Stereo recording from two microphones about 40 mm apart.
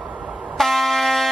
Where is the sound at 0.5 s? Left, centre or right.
Centre.